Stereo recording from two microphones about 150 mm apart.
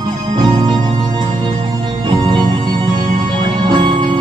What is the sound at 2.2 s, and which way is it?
Music, 30° right (ahead or behind).